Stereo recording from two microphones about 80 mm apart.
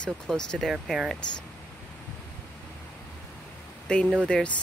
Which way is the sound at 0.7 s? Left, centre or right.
Centre.